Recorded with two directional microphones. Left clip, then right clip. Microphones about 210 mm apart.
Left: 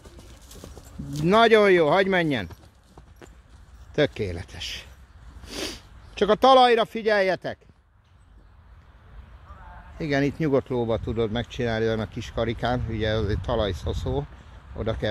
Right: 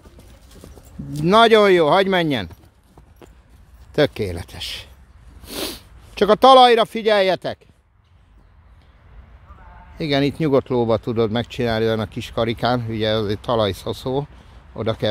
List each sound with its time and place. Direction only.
1.1 s speech: 15° right (ahead or behind)
3.9 s speech: 20° right (ahead or behind)
5.4 s sneeze: 25° right (ahead or behind)
6.1 s speech: 25° right (ahead or behind)
9.9 s speech: 20° right (ahead or behind)